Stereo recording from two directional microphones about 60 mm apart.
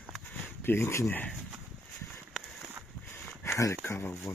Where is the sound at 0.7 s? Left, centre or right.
Left.